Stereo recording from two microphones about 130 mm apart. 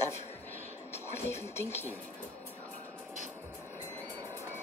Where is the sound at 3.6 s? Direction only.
15° left (ahead or behind).